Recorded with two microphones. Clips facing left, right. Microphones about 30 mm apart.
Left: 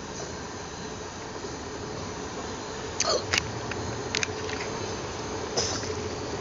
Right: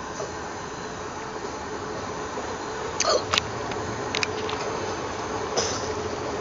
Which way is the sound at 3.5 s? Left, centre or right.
Centre.